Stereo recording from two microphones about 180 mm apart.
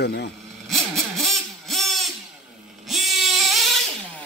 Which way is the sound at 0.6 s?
Centre (ahead or behind).